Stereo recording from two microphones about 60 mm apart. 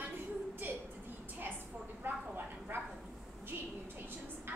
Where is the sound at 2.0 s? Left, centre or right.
Right.